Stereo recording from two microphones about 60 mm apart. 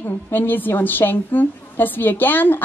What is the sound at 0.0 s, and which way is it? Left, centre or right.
A woman's voice, left.